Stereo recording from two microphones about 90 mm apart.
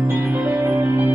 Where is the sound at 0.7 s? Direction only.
20° right (ahead or behind).